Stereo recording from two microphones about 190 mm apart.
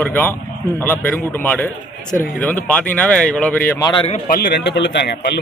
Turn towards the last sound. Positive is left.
turn(degrees=60)  # may be behind; listen again after turning